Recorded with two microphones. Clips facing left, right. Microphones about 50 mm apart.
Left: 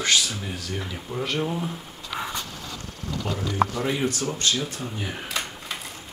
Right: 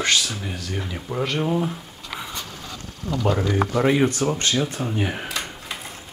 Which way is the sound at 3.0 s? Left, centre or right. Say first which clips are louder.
Right 7 dB; right.